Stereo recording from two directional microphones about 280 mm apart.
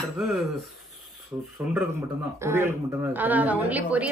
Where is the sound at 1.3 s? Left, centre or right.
Centre.